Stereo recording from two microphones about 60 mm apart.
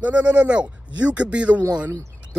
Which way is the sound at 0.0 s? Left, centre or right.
Centre.